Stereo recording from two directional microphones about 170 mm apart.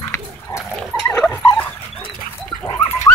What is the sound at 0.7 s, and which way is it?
Dog, 5° left (ahead or behind).